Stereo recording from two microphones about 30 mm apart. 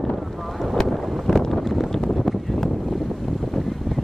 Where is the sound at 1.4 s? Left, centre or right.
Centre.